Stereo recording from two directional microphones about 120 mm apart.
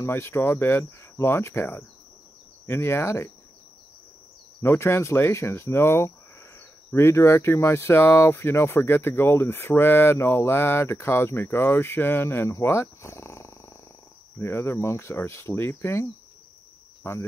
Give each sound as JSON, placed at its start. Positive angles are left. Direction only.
{"t": 0.0, "sound": "speech", "side_deg": 20}
{"t": 4.6, "sound": "speech", "side_deg": 20}
{"t": 17.0, "sound": "cricket", "side_deg": 20}